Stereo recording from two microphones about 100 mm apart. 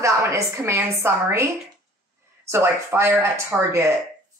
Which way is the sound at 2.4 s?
25° right (ahead or behind).